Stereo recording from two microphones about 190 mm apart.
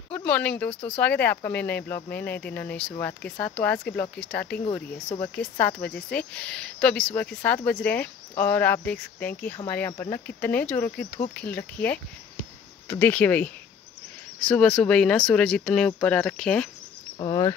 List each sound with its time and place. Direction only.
0.1 s speech: 5° left (ahead or behind)
12.8 s speech: 10° left (ahead or behind)
17.2 s speech: 20° left (ahead or behind)